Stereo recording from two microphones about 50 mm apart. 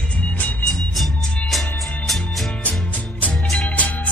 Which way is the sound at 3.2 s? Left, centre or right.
Left.